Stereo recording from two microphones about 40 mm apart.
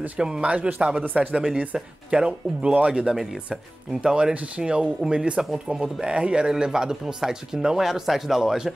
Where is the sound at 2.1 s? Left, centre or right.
Right.